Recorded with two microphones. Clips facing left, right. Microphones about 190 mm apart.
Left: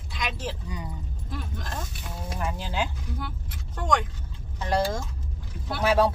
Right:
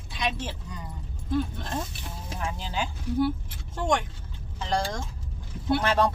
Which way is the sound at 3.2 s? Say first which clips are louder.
Right 12 dB; 25° right (ahead or behind).